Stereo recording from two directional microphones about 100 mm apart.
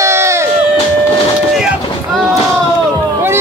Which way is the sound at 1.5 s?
5° right (ahead or behind).